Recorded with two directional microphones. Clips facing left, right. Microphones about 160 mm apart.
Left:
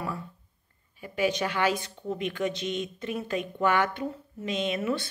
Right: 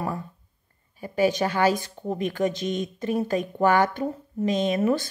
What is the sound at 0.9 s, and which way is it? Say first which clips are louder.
Speech: right 5 dB; 40° right (ahead or behind).